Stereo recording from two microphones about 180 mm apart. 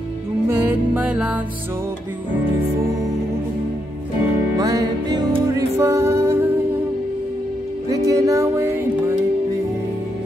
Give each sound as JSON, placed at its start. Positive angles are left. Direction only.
{"t": 0.5, "sound": "music", "side_deg": -10}
{"t": 4.6, "sound": "music", "side_deg": -20}
{"t": 7.9, "sound": "music", "side_deg": -20}